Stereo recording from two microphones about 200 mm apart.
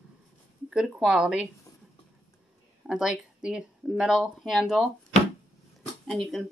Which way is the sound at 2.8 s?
5° right (ahead or behind).